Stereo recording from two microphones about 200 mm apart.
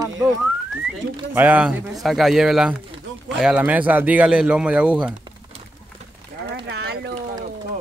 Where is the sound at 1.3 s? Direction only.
10° right (ahead or behind).